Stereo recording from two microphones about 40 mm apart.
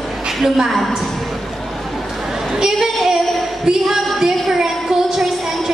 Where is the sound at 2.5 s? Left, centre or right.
Centre.